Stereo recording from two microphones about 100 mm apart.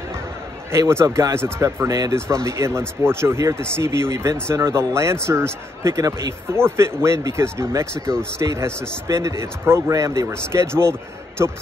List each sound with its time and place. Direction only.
0.7 s speech: 25° right (ahead or behind)